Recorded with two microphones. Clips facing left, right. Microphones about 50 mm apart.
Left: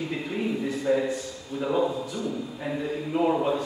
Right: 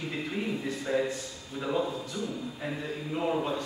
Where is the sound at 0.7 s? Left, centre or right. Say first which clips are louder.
Left 5 dB; centre.